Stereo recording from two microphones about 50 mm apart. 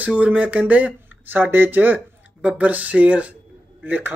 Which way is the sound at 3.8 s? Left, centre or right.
Right.